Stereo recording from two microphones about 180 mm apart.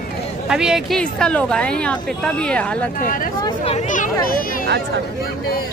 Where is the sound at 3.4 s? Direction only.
35° left (ahead or behind); by 4.6 s 50° left (ahead or behind).